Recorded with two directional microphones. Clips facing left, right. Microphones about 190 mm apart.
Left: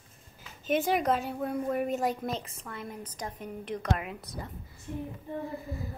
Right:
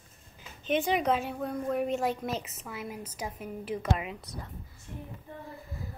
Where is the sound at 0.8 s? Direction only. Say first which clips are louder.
Even; centre (ahead or behind).